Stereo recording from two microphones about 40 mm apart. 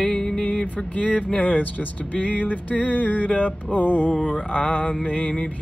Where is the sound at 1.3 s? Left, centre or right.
Left.